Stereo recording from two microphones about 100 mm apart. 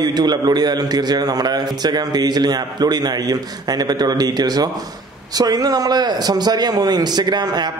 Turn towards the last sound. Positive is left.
turn(degrees=-45)  # may be behind; listen again after turning